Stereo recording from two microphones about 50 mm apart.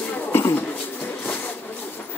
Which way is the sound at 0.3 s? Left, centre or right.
Left.